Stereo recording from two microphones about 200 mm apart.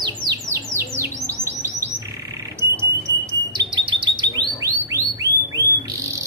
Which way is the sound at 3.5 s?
20° right (ahead or behind).